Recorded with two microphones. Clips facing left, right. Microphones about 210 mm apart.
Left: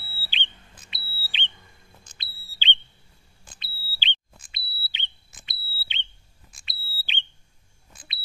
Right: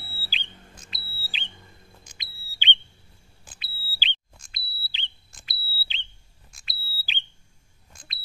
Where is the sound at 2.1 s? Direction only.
15° right (ahead or behind).